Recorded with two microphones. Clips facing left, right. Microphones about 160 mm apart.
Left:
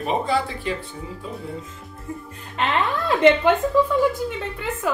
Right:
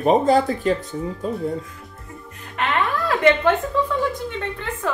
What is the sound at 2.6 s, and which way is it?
Speech, 25° left (ahead or behind).